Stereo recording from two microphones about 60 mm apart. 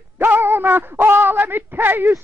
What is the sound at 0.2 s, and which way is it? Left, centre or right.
Speech, right.